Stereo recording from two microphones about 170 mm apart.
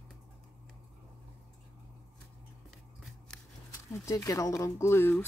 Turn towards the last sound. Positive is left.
turn(degrees=15)  # may be behind; listen again after turning